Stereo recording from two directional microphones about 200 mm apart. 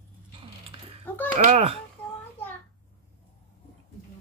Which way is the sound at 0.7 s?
25° right (ahead or behind).